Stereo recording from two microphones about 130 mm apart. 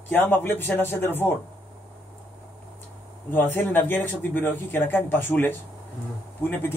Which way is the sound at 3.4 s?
15° left (ahead or behind).